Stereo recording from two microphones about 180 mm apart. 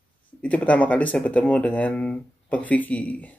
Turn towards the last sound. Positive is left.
turn(degrees=10)  # may be behind; listen again after turning